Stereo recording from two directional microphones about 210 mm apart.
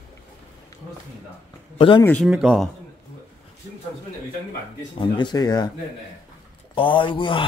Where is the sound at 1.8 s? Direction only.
25° left (ahead or behind).